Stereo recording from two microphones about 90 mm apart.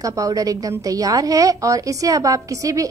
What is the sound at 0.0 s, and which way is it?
A woman's voice, 40° right (ahead or behind).